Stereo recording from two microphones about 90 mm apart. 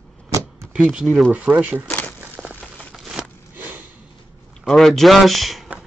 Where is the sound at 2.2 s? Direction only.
20° right (ahead or behind).